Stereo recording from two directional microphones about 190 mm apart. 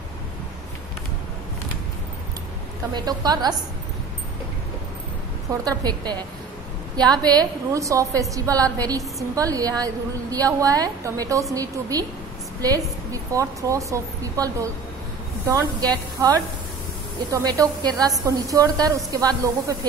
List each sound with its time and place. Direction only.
2.9 s a woman's voice: 20° right (ahead or behind)
5.5 s a woman's voice: 20° right (ahead or behind)
13.1 s a woman's voice: 15° right (ahead or behind)